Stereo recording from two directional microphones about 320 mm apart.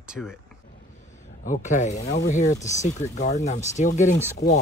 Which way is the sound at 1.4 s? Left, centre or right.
Left.